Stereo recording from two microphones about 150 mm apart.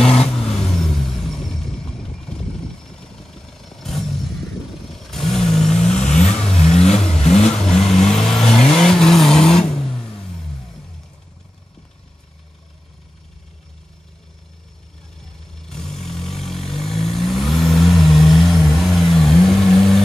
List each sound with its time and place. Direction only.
0.4 s vehicle: 5° left (ahead or behind)
6.5 s vehicle: 45° left (ahead or behind)
7.4 s vehicle: 5° left (ahead or behind)
15.6 s vehicle: 5° left (ahead or behind)